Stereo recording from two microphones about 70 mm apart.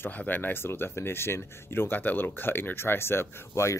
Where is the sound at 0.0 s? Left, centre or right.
Left.